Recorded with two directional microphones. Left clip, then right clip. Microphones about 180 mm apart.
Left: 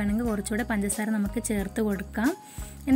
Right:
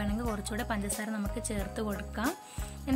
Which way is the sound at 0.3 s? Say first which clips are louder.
Left 5 dB; 20° left (ahead or behind).